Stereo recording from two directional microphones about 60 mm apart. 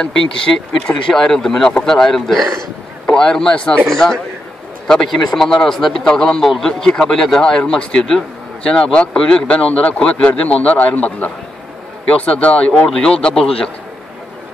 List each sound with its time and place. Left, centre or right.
0.0 s speech: centre
12.8 s speech: centre